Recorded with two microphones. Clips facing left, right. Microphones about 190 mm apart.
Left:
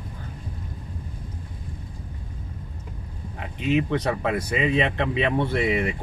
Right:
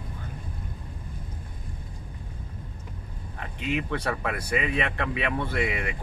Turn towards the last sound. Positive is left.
turn(degrees=25)  # may be behind; listen again after turning